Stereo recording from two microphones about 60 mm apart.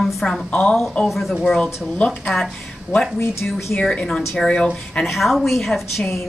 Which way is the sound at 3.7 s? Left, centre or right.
Centre.